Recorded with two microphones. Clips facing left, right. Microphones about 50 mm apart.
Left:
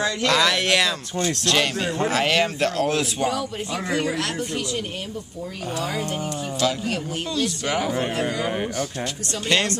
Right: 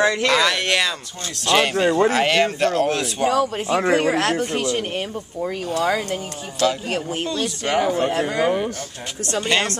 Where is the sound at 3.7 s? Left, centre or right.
Right.